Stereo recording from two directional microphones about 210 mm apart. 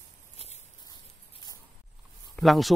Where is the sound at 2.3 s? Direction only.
Centre (ahead or behind).